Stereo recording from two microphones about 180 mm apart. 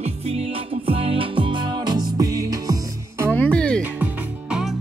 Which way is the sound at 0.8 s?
30° right (ahead or behind).